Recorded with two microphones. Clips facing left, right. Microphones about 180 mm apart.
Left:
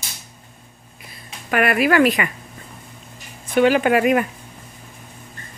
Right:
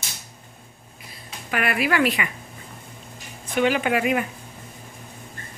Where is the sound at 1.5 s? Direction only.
50° left (ahead or behind).